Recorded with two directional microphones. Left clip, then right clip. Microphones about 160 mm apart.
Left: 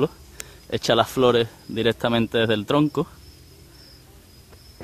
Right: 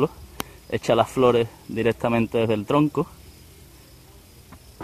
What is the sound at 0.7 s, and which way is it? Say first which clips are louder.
Speech: even; 5° left (ahead or behind).